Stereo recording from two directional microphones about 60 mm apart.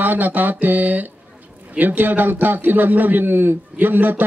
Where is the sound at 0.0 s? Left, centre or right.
Right.